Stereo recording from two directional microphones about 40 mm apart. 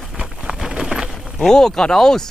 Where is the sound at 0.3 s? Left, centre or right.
Centre.